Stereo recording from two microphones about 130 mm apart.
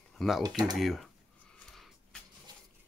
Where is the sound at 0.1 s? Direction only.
5° left (ahead or behind).